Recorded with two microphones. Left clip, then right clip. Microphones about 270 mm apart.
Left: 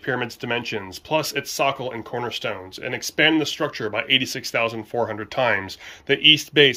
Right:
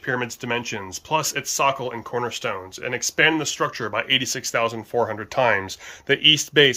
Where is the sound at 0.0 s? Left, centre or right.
Centre.